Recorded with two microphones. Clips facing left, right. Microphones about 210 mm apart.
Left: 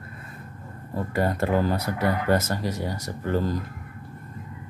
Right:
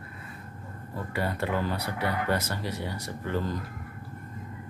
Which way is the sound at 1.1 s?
45° left (ahead or behind).